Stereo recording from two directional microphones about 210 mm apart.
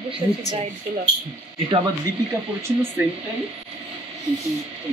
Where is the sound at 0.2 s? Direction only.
20° right (ahead or behind).